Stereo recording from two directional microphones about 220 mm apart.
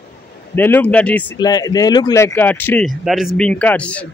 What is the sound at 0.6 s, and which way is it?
Speech, 10° left (ahead or behind).